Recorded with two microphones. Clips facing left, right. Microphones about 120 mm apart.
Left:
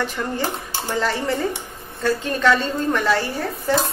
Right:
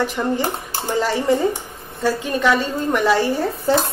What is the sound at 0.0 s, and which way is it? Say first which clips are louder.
A woman's voice: right 4 dB; 15° right (ahead or behind).